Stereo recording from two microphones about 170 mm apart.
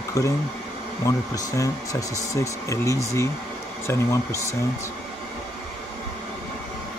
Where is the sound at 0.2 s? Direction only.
20° left (ahead or behind).